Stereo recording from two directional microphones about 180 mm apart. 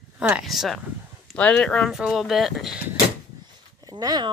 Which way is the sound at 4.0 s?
20° right (ahead or behind).